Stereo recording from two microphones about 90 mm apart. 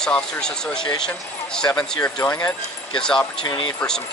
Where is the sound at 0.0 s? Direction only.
5° left (ahead or behind).